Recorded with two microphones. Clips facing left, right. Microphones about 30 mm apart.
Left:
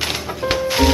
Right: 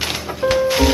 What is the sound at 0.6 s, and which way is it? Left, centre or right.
Music, centre.